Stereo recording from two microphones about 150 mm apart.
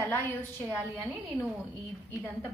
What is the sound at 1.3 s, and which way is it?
Speech, 35° left (ahead or behind).